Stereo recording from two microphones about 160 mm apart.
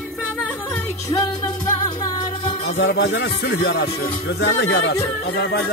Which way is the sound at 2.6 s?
90° left.